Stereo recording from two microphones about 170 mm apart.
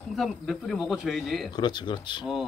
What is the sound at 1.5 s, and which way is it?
Speech, 25° left (ahead or behind).